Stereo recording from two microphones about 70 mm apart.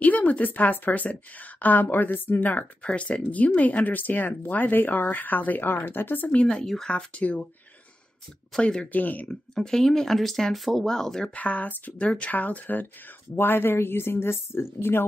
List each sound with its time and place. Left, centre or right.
0.0 s a woman's voice: left
6.4 s speech: centre
8.5 s speech: centre
8.9 s a woman's voice: left
9.6 s speech: centre
11.3 s a woman's voice: left